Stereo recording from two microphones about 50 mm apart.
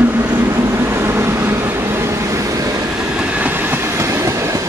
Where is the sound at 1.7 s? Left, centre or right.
Right.